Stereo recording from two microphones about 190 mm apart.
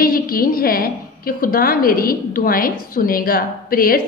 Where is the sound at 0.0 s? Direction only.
50° left (ahead or behind).